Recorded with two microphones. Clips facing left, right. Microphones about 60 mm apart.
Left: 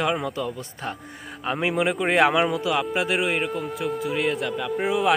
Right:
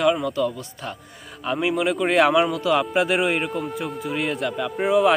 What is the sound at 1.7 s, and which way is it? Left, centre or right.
Speech, centre.